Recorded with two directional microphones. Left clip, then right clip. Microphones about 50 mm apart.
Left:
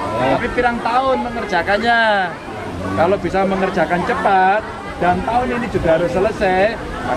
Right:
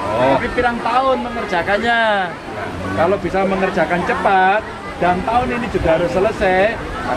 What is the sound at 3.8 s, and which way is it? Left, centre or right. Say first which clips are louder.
Speech: even; centre.